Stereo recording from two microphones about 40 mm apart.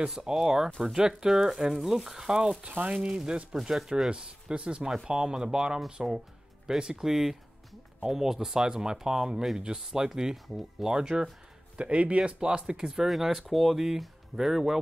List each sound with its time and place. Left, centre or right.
0.0 s speech: centre
2.6 s speech: right
3.1 s speech: centre
6.8 s speech: centre
10.9 s speech: right
11.7 s speech: right
12.2 s speech: right
12.8 s speech: centre